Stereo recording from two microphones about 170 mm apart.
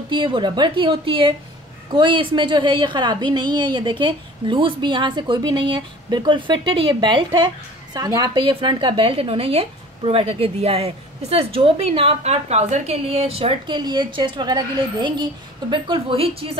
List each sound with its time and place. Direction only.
0.1 s a woman's voice: 30° right (ahead or behind)